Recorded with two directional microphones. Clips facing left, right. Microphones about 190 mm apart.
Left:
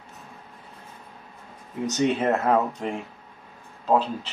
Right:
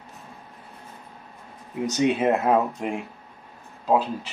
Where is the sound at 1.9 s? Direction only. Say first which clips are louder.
Right 1 dB; 10° right (ahead or behind).